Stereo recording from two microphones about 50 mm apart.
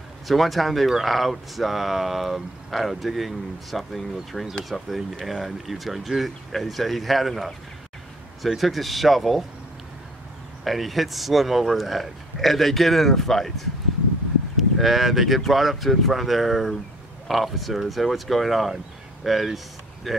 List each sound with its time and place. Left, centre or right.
0.3 s speech: centre
10.6 s speech: centre